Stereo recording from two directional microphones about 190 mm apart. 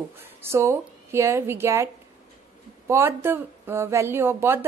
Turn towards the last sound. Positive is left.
turn(degrees=-10)  # may be behind; listen again after turning